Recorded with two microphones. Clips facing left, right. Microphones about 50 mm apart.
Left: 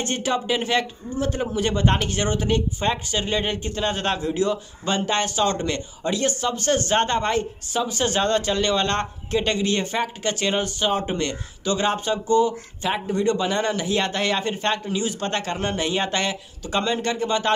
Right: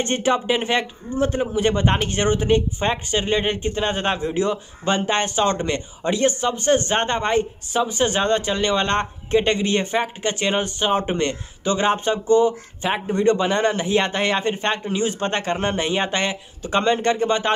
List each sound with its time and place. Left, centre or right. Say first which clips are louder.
0.0 s speech: right 4 dB; right